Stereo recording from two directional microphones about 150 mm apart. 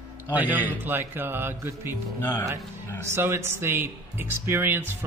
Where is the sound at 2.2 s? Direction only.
15° left (ahead or behind).